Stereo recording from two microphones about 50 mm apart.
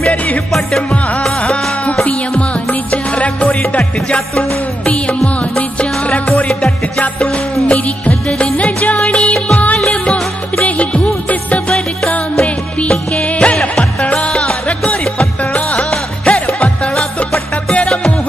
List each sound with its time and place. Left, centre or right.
0.5 s music: centre
1.4 s music: left
8.1 s music: centre
8.5 s music: left
10.6 s music: left
12.4 s music: centre
16.9 s music: centre